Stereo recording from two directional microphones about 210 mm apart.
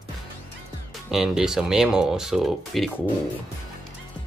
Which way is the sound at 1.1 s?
Centre (ahead or behind).